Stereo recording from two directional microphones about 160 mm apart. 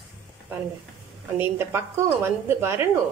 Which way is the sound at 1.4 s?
15° right (ahead or behind).